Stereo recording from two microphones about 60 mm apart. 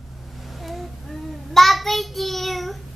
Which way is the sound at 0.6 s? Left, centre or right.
Centre.